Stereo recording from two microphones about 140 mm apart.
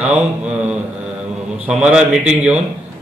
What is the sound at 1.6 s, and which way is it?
Speech, 10° right (ahead or behind).